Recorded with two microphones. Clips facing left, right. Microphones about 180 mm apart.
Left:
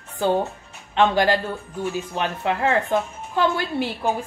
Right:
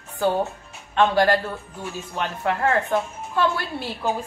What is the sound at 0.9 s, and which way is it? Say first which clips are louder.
A woman's voice: even; 20° left (ahead or behind).